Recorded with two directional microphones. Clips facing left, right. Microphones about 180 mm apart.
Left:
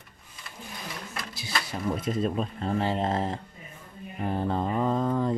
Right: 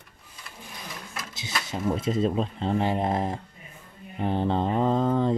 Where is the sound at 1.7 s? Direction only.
25° right (ahead or behind).